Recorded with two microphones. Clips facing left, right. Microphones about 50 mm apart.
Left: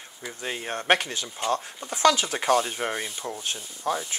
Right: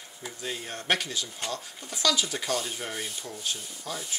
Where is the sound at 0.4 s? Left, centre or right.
Left.